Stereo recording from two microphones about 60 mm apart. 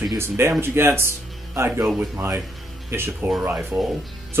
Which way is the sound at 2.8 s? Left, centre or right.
Right.